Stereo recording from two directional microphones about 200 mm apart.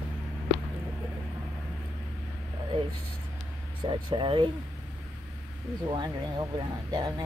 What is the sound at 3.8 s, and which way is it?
Speech, 25° right (ahead or behind).